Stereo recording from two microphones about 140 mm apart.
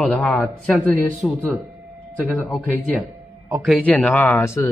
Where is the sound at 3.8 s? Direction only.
10° left (ahead or behind).